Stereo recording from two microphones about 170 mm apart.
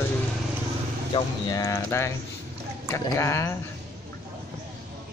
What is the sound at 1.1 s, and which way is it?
Speech, 20° left (ahead or behind).